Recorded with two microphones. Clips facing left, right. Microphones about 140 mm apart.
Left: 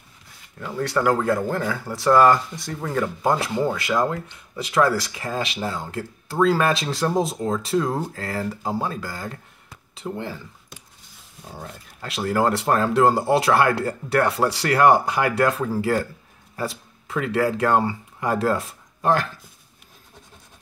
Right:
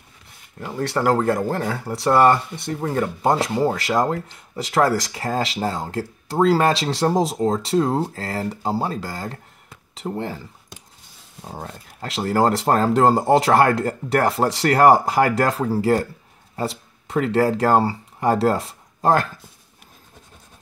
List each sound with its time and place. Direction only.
0.6 s speech: 30° right (ahead or behind)
11.4 s speech: 40° right (ahead or behind)